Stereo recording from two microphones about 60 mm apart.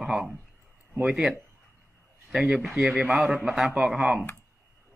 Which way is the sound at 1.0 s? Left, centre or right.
Centre.